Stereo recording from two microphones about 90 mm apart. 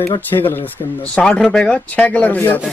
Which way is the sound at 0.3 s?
25° left (ahead or behind).